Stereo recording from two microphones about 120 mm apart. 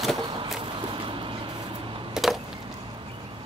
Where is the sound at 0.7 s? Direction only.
45° right (ahead or behind).